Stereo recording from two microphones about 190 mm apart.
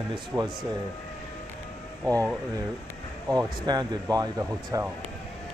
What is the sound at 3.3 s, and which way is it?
Speech, 20° right (ahead or behind).